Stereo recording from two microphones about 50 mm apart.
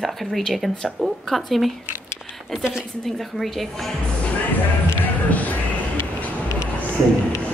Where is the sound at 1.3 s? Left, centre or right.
Centre.